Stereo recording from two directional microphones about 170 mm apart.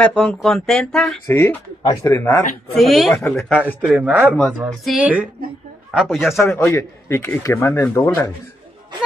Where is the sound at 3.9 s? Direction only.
10° right (ahead or behind).